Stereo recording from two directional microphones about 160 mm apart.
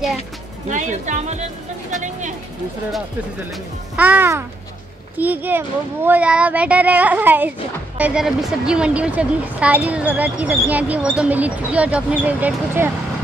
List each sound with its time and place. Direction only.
0.7 s speech: 50° right (ahead or behind)
3.9 s speech: 10° right (ahead or behind)